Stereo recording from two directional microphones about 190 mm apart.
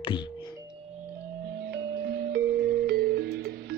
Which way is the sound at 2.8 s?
55° right (ahead or behind).